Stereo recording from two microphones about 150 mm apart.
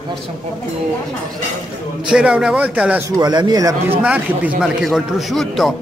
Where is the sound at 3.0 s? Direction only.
25° right (ahead or behind).